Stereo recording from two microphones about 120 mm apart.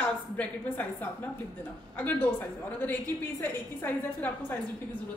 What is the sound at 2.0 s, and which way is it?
A woman's voice, 15° left (ahead or behind).